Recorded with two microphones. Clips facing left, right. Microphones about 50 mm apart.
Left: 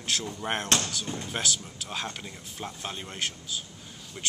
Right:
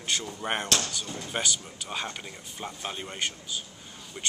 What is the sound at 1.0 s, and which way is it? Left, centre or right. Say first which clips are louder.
Speech: left 2 dB; left.